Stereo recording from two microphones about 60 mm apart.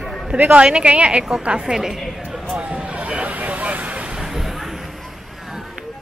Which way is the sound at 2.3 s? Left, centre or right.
Centre.